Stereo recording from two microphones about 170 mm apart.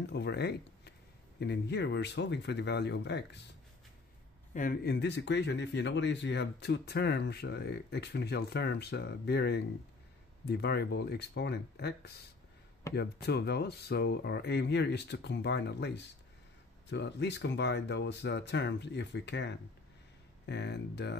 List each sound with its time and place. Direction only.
0.0 s speech: 80° left
4.6 s a man's voice: 55° left (ahead or behind)
4.9 s speech: 90° left